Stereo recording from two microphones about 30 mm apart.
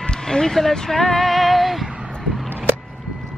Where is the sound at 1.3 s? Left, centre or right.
Centre.